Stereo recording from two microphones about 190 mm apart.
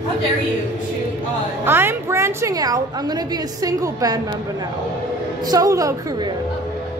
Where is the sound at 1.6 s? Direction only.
10° right (ahead or behind).